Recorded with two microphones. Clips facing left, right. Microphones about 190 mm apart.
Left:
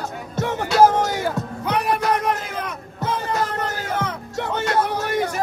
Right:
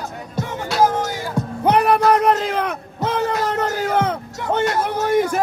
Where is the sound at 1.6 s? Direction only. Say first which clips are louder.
Right 6 dB; 65° right (ahead or behind).